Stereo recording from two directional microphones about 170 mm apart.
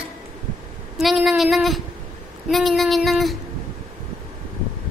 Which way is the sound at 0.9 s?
Centre (ahead or behind).